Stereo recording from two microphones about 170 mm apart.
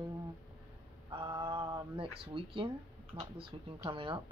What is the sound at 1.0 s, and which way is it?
Speech, 30° right (ahead or behind).